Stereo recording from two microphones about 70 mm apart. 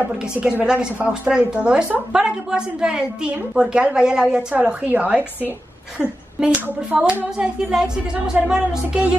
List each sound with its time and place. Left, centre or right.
0.4 s a woman's voice: centre